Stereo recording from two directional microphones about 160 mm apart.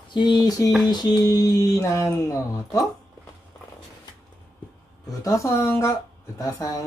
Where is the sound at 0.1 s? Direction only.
25° left (ahead or behind).